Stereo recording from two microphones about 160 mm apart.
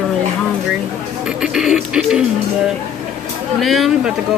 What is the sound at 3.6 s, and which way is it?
Music, centre (ahead or behind).